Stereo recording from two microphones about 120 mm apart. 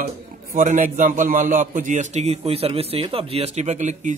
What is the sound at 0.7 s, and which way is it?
A man's voice, 90° right.